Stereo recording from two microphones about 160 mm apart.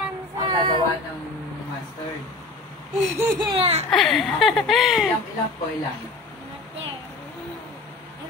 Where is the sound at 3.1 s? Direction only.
20° right (ahead or behind).